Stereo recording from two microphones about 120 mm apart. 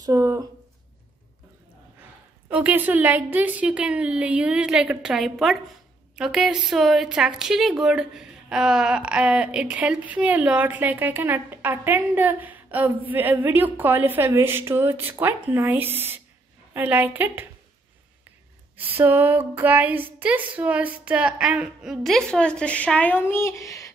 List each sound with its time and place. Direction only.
0.0 s a sound: 30° right (ahead or behind)
2.5 s a woman's voice: 15° right (ahead or behind)
18.8 s a woman's voice: 15° right (ahead or behind); by 23.9 s 25° left (ahead or behind)